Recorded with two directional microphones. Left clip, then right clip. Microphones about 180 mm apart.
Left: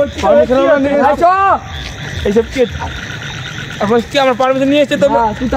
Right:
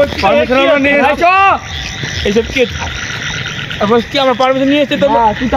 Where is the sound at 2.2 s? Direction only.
10° right (ahead or behind).